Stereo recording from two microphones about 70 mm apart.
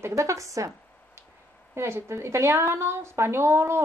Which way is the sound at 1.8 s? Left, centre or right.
Right.